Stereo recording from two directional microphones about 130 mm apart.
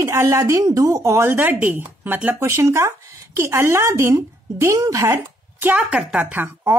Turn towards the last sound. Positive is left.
turn(degrees=-15)  # may be behind; listen again after turning